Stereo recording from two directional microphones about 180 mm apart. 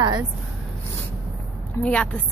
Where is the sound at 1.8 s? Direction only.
10° left (ahead or behind).